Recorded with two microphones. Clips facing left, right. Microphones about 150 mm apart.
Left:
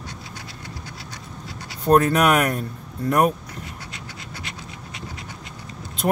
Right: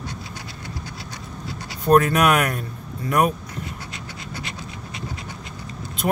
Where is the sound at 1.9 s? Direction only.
35° left (ahead or behind).